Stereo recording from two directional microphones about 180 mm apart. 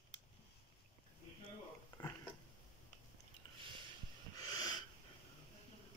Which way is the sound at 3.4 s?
25° left (ahead or behind).